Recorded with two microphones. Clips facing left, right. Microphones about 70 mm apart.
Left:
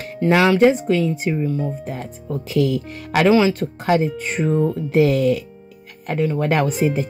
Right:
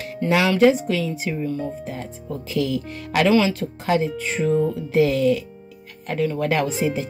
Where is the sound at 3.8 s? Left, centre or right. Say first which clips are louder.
Left 3 dB; left.